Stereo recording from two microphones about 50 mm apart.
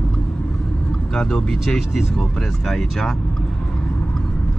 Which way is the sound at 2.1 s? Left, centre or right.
Centre.